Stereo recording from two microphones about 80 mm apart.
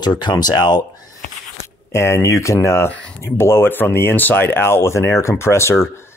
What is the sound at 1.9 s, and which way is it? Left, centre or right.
Speech, left.